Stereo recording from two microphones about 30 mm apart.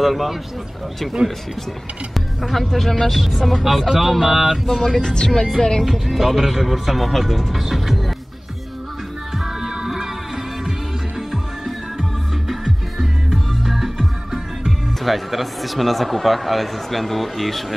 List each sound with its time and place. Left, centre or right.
0.0 s speech: centre
2.4 s speech: centre
5.0 s speech: left
5.9 s speech: centre
9.6 s music: centre
15.0 s speech: centre